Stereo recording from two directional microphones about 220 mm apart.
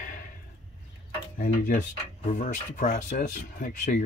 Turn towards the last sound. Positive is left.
turn(degrees=35)  # may be behind; listen again after turning